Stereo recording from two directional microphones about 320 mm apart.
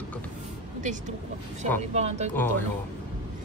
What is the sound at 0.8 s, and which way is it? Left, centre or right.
Speech, right.